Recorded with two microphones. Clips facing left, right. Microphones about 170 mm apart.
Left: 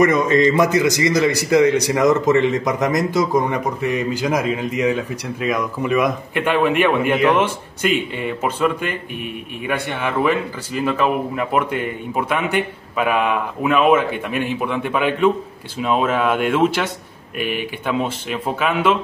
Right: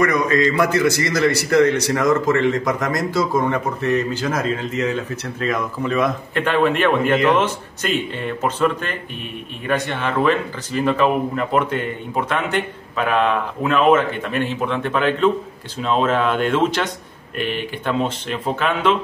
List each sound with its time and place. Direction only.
0.0 s speech: 25° left (ahead or behind); by 18.9 s 5° left (ahead or behind)